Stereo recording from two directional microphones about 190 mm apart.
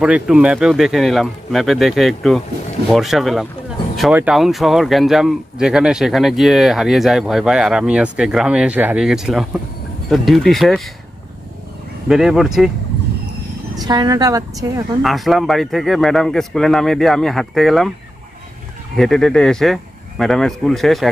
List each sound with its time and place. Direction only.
0.0 s speech: 5° right (ahead or behind)
12.1 s speech: centre (ahead or behind)
13.7 s speech: 20° right (ahead or behind)
15.0 s speech: centre (ahead or behind)
18.9 s speech: 5° left (ahead or behind)